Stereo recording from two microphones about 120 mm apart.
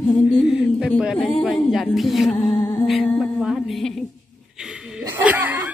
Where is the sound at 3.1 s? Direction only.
Centre (ahead or behind).